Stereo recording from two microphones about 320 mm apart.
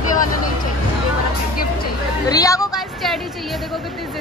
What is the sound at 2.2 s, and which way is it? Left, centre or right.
Speech, centre.